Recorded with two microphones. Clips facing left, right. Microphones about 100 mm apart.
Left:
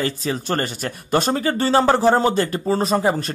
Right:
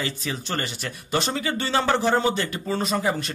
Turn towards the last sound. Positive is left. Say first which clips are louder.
# left 5 dB
turn(degrees=35)  # may be behind; listen again after turning